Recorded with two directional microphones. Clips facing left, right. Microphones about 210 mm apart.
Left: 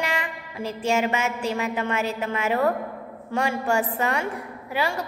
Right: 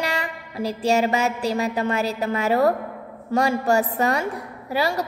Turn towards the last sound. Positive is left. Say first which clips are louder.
# right 3 dB
turn(degrees=-40)  # may be behind; listen again after turning